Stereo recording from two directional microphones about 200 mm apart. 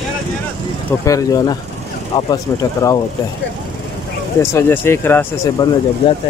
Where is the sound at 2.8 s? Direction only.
15° left (ahead or behind).